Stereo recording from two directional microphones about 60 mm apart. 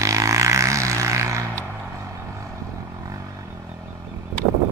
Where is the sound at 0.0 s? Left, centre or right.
Right.